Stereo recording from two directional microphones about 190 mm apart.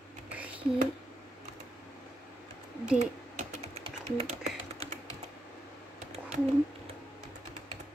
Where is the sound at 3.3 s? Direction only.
35° right (ahead or behind).